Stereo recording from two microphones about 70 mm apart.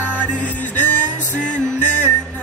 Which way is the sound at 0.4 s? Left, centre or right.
Centre.